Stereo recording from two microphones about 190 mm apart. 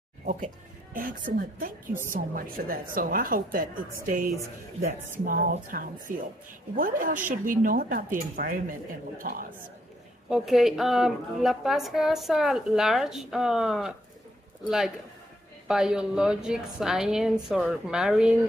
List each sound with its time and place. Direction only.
0.2 s music: 40° right (ahead or behind)
0.9 s a woman's voice: 50° right (ahead or behind)
10.3 s a woman's voice: centre (ahead or behind)
15.7 s a woman's voice: 5° right (ahead or behind)